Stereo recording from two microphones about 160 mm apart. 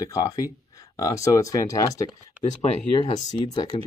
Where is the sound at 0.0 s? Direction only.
20° left (ahead or behind).